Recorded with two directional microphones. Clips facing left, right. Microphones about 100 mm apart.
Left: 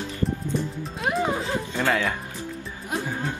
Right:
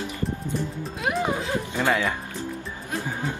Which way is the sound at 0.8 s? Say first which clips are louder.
Even; centre (ahead or behind).